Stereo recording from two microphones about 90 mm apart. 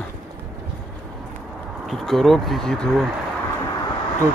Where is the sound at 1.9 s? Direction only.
Centre (ahead or behind).